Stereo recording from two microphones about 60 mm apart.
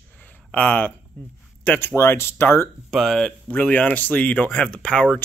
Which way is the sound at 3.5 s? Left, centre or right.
Left.